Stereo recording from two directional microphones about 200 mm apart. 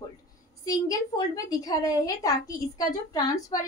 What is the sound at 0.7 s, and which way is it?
A woman's voice, 20° left (ahead or behind).